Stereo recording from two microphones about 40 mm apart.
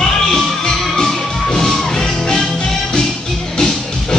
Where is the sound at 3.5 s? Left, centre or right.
Centre.